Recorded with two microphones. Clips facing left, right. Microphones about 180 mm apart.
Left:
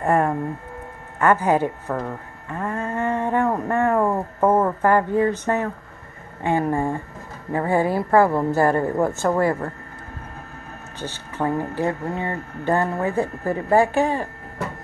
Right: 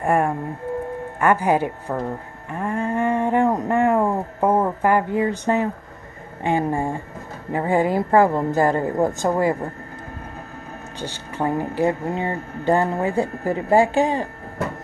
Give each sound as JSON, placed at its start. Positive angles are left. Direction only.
{"t": 0.0, "sound": "music", "side_deg": -15}
{"t": 1.2, "sound": "speech", "side_deg": -10}
{"t": 11.0, "sound": "speech", "side_deg": -15}